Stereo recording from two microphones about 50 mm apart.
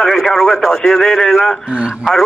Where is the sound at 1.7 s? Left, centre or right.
Right.